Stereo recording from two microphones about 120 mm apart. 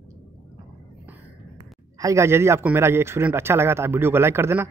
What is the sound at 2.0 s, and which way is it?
A man's voice, 25° right (ahead or behind).